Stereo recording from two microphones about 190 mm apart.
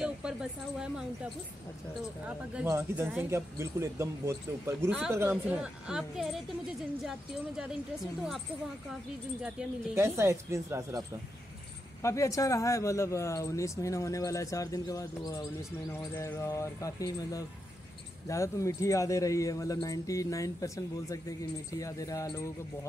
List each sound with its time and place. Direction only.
0.0 s speech: 5° right (ahead or behind)
2.2 s a woman's voice: 10° right (ahead or behind)
9.4 s a woman's voice: 5° right (ahead or behind)
9.9 s speech: 15° right (ahead or behind)
12.0 s speech: 15° left (ahead or behind)